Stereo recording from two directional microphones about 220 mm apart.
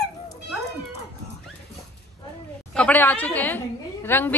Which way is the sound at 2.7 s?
5° left (ahead or behind).